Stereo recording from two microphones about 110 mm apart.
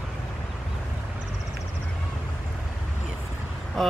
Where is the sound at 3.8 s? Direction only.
Centre (ahead or behind).